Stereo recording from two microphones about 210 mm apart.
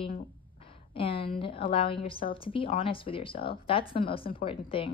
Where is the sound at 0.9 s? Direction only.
25° left (ahead or behind).